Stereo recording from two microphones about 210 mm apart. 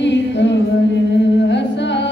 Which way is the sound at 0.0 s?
55° left (ahead or behind).